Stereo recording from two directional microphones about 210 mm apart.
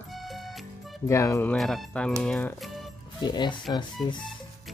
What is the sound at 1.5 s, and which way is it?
Speech, centre (ahead or behind).